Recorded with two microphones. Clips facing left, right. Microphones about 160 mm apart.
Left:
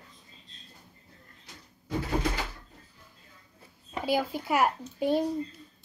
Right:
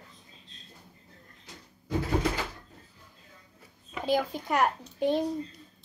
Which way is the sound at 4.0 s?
10° left (ahead or behind).